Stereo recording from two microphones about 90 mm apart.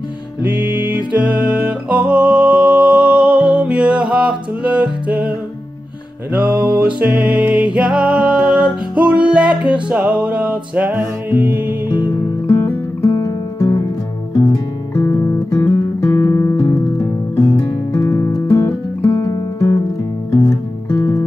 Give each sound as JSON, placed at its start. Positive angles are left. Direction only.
{"t": 0.4, "sound": "music", "side_deg": -20}
{"t": 6.3, "sound": "music", "side_deg": -15}
{"t": 12.4, "sound": "music", "side_deg": 25}
{"t": 15.0, "sound": "music", "side_deg": 35}
{"t": 19.2, "sound": "music", "side_deg": 40}